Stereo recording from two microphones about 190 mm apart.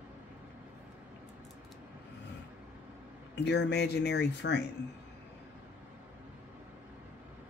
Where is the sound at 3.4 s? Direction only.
65° left (ahead or behind).